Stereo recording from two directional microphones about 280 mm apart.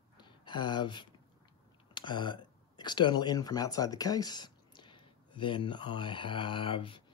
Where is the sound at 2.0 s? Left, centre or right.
Centre.